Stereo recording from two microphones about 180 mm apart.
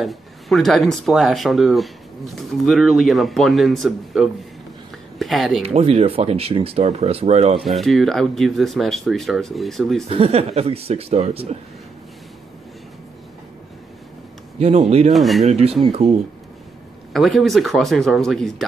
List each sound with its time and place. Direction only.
0.0 s speech: centre (ahead or behind)
5.6 s speech: 35° right (ahead or behind)
7.6 s speech: centre (ahead or behind)
10.0 s speech: 35° right (ahead or behind)
14.6 s speech: 35° right (ahead or behind)
15.1 s speech: centre (ahead or behind)
15.4 s speech: 35° right (ahead or behind)
17.1 s speech: centre (ahead or behind)